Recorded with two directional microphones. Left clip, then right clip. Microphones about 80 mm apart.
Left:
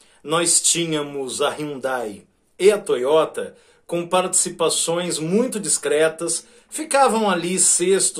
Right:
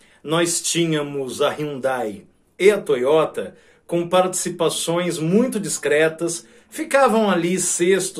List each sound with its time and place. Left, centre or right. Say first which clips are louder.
0.3 s speech: left 1 dB; left
1.8 s speech: right 2 dB; centre